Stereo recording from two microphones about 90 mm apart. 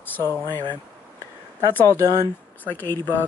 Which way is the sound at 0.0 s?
25° left (ahead or behind).